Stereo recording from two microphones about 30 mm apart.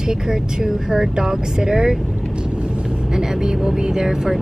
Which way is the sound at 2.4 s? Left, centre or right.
Right.